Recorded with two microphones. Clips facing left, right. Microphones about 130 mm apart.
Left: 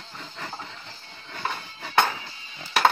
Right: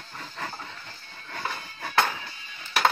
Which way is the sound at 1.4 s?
25° left (ahead or behind).